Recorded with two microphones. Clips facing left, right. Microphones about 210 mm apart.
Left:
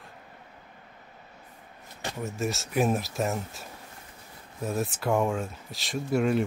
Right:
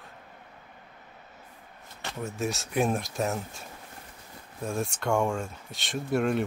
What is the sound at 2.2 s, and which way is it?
Speech, centre (ahead or behind).